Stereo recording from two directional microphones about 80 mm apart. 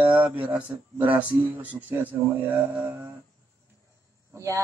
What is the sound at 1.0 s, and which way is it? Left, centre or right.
Speech, centre.